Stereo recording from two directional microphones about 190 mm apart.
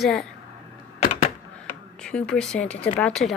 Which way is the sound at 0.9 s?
35° left (ahead or behind).